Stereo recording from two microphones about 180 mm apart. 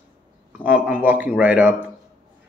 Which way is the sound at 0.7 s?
10° right (ahead or behind).